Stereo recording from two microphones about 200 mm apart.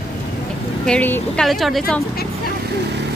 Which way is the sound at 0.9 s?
10° left (ahead or behind).